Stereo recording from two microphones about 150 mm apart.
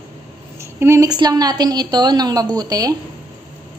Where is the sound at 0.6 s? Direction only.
20° right (ahead or behind).